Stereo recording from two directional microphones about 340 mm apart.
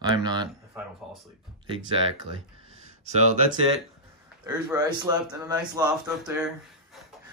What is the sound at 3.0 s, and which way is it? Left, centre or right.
Speech, centre.